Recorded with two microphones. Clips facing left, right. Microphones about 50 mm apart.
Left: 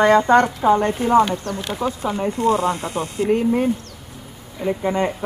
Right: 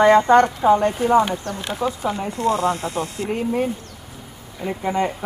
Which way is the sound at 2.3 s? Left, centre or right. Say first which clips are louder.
Left 1 dB; left.